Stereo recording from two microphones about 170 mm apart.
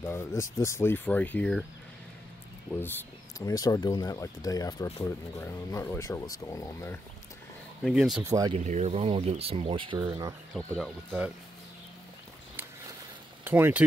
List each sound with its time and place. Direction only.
0.0 s speech: 15° left (ahead or behind)
2.7 s speech: 10° left (ahead or behind)
3.4 s speech: 20° left (ahead or behind)
7.8 s speech: centre (ahead or behind)
8.5 s speech: 40° right (ahead or behind); by 10.3 s 25° right (ahead or behind)
10.5 s speech: 5° left (ahead or behind)
13.4 s speech: 10° right (ahead or behind)